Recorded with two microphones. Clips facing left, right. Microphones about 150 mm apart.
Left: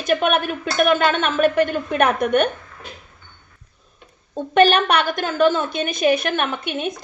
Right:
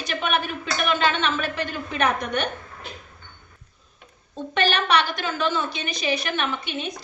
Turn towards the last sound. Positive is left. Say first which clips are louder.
# left 4 dB
turn(degrees=50)  # may be behind; listen again after turning